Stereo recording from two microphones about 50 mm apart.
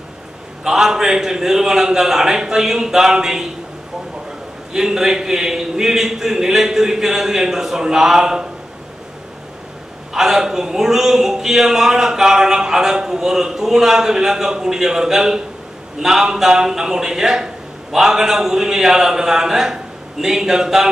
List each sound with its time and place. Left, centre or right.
0.7 s a man's voice: centre
4.7 s a man's voice: centre
10.1 s a man's voice: centre